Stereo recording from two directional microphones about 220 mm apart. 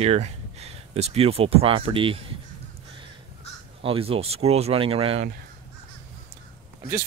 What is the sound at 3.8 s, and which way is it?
Speech, 25° right (ahead or behind).